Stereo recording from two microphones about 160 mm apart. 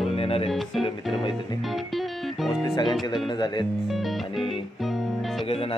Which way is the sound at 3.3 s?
25° left (ahead or behind).